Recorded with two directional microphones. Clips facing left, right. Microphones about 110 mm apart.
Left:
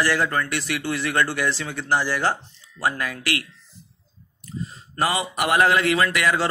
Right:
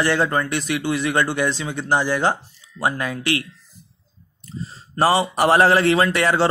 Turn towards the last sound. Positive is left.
turn(degrees=-30)  # may be behind; listen again after turning